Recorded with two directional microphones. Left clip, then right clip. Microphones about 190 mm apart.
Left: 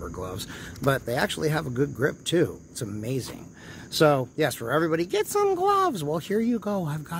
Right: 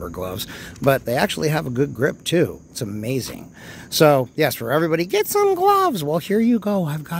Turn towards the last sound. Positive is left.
turn(degrees=-35)  # may be behind; listen again after turning